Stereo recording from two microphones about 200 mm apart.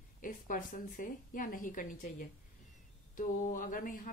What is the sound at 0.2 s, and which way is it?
A woman's voice, 40° left (ahead or behind).